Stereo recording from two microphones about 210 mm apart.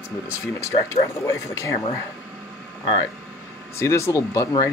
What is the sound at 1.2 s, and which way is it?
Speech, 15° left (ahead or behind).